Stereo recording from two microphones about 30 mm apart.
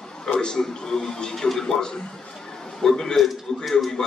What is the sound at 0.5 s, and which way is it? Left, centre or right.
A man's voice, centre.